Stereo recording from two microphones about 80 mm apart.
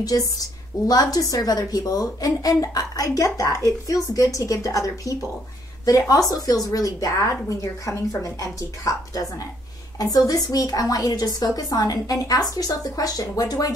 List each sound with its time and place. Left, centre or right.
0.0 s a woman's voice: left